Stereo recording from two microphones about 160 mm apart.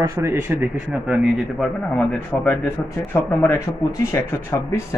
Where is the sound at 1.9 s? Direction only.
5° left (ahead or behind).